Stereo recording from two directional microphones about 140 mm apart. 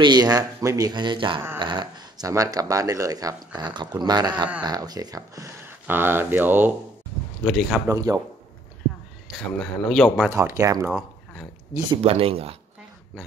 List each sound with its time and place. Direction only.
0.0 s speech: 30° right (ahead or behind); by 6.7 s 15° right (ahead or behind)
7.4 s speech: centre (ahead or behind)
7.9 s speech: 25° right (ahead or behind)
9.6 s speech: 5° left (ahead or behind)
10.3 s speech: 20° right (ahead or behind)
10.9 s a sound: centre (ahead or behind)
12.0 s speech: 45° right (ahead or behind)